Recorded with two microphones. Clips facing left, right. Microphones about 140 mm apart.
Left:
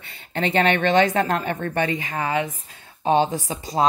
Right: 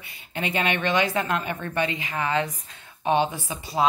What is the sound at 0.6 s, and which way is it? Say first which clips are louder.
Speech: left 6 dB; 50° left (ahead or behind).